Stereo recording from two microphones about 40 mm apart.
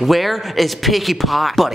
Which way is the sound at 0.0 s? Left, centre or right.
Centre.